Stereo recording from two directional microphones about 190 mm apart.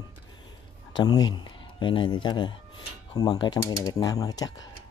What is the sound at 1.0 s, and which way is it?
Speech, 20° left (ahead or behind).